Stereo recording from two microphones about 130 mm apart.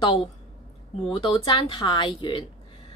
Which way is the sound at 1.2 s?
40° left (ahead or behind).